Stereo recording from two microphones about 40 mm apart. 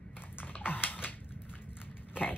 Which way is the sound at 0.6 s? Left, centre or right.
Left.